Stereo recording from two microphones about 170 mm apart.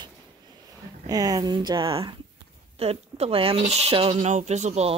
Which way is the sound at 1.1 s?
20° right (ahead or behind).